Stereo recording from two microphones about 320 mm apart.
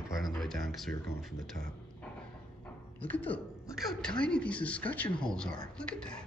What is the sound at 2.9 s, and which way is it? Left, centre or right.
Speech, centre.